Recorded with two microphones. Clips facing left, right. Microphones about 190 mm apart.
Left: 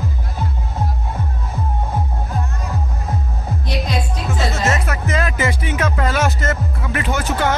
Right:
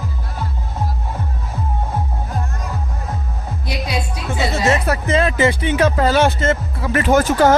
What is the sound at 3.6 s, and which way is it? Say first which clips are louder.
Music: even; 10° right (ahead or behind).